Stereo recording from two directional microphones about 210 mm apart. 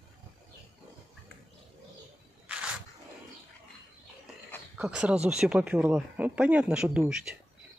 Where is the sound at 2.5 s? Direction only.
5° right (ahead or behind).